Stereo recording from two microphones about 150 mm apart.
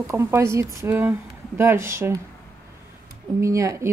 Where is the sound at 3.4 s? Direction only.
20° right (ahead or behind).